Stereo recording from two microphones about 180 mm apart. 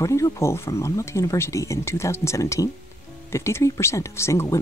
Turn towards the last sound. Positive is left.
turn(degrees=15)  # may be behind; listen again after turning